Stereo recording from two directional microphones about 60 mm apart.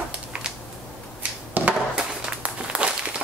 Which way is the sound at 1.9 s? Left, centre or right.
Centre.